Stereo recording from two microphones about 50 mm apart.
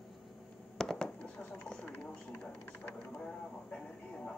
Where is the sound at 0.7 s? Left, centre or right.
Centre.